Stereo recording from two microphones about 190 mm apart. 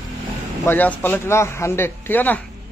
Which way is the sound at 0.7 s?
10° left (ahead or behind).